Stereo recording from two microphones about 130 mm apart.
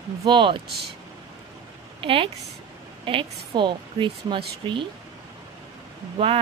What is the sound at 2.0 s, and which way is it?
A woman's voice, 45° right (ahead or behind).